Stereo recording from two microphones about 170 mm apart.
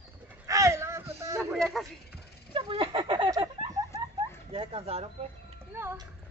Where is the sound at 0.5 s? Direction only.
20° right (ahead or behind).